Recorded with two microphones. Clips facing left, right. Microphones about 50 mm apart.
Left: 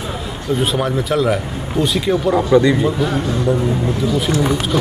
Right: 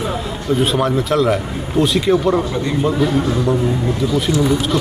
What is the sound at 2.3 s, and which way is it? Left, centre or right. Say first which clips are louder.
Speech: left 5 dB; left.